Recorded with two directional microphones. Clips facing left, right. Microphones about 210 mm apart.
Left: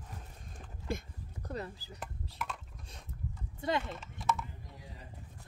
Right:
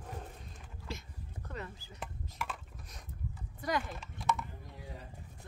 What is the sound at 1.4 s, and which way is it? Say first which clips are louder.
Chopping: left 4 dB; 35° left (ahead or behind).